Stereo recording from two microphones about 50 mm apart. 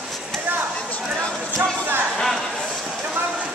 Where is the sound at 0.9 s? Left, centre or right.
Left.